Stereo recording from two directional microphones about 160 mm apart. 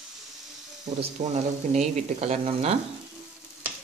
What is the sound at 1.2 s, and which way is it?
Speech, 45° right (ahead or behind).